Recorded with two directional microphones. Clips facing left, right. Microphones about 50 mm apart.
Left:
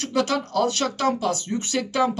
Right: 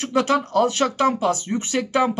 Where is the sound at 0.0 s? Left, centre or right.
Right.